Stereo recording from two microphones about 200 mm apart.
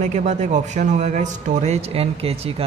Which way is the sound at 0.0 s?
35° right (ahead or behind).